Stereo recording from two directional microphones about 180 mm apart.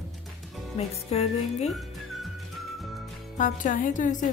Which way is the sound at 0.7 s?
35° left (ahead or behind).